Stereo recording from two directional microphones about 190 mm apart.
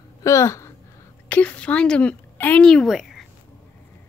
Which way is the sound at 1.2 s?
10° left (ahead or behind).